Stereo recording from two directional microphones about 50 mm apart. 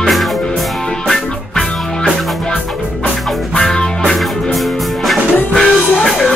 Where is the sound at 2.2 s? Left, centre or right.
Centre.